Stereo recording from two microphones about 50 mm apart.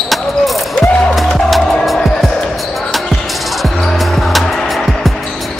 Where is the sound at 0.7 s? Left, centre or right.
Centre.